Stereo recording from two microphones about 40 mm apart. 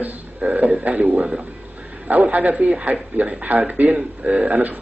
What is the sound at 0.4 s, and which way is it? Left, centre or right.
Speech, right.